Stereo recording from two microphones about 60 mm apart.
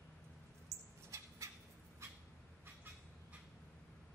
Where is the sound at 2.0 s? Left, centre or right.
Right.